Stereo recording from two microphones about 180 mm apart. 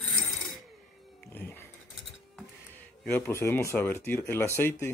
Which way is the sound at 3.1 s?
10° left (ahead or behind).